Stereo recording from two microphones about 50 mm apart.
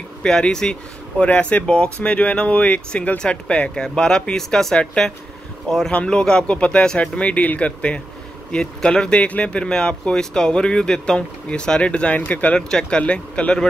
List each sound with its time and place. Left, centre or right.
0.2 s speech: centre
1.2 s speech: left
12.5 s speech: centre